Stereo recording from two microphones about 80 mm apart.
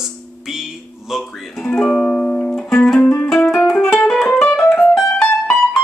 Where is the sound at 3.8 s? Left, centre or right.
Left.